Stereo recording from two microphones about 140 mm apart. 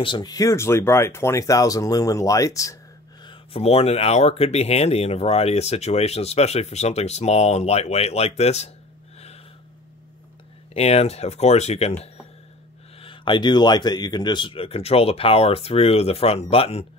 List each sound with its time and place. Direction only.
0.0 s speech: 30° left (ahead or behind)
3.3 s speech: 45° left (ahead or behind)
10.7 s speech: 45° left (ahead or behind)
13.0 s speech: 35° left (ahead or behind)